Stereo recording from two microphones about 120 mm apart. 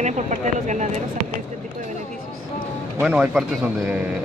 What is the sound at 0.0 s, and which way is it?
Speech, 90° right.